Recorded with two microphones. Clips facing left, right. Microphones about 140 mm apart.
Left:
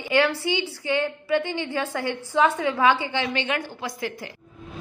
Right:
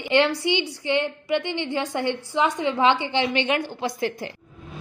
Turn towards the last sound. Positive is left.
turn(degrees=-25)  # may be behind; listen again after turning